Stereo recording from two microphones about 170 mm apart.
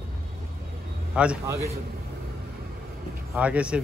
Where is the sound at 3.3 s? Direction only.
5° right (ahead or behind).